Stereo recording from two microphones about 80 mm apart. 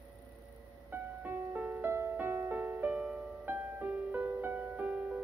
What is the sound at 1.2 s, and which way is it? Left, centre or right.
Music, right.